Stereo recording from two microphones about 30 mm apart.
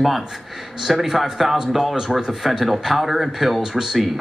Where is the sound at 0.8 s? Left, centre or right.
Centre.